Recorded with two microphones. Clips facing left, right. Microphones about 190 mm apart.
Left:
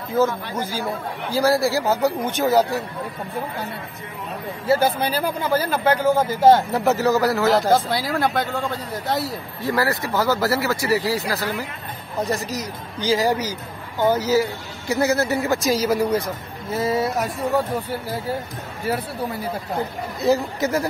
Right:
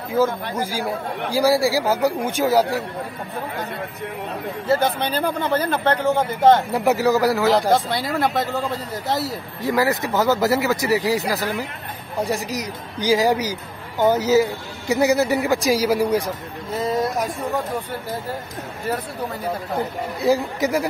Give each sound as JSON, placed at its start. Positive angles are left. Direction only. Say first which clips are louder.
{"t": 0.6, "sound": "speech", "louder": "right 1 dB", "side_deg": -10}
{"t": 4.6, "sound": "speech", "louder": "left 1 dB", "side_deg": 5}
{"t": 6.7, "sound": "speech", "louder": "right 1 dB", "side_deg": -10}
{"t": 7.7, "sound": "speech", "louder": "even", "side_deg": 0}
{"t": 9.6, "sound": "speech", "louder": "right 2 dB", "side_deg": -15}
{"t": 16.7, "sound": "speech", "louder": "left 1 dB", "side_deg": 5}
{"t": 20.2, "sound": "speech", "louder": "even", "side_deg": -10}